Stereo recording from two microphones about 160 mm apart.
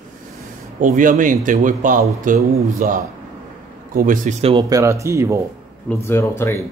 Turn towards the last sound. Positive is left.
turn(degrees=15)  # may be behind; listen again after turning